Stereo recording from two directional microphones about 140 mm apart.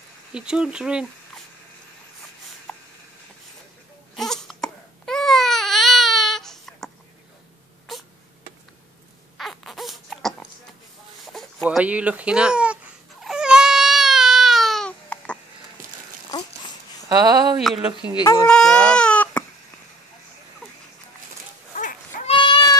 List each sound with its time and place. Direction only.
0.3 s speech: 5° right (ahead or behind)
4.1 s baby cry: centre (ahead or behind)
9.4 s a sound: centre (ahead or behind)
13.2 s baby cry: 5° right (ahead or behind)
15.8 s a sound: 80° right
16.3 s a sound: 30° left (ahead or behind)
17.1 s speech: 30° right (ahead or behind)
17.6 s speech: centre (ahead or behind)
18.1 s speech: 25° left (ahead or behind)
18.5 s speech: 5° left (ahead or behind)
21.7 s baby cry: 65° left (ahead or behind)
22.3 s goat: 35° left (ahead or behind)